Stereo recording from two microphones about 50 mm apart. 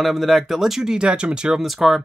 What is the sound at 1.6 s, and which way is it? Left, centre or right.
Speech, centre.